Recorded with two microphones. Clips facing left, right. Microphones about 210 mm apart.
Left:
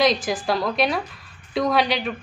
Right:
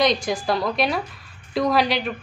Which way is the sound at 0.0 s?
Centre (ahead or behind).